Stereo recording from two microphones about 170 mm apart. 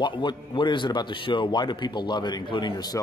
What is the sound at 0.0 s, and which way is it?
A man's voice, 25° left (ahead or behind).